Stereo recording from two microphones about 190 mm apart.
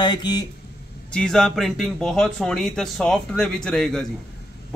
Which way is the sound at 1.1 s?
5° left (ahead or behind).